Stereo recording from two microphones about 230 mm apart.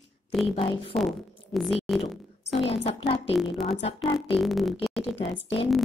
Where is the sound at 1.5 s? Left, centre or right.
Centre.